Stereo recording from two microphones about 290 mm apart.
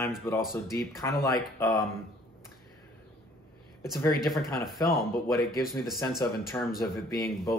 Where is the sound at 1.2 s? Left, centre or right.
Centre.